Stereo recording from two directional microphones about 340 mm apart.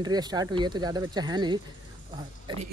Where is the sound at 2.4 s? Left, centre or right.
Centre.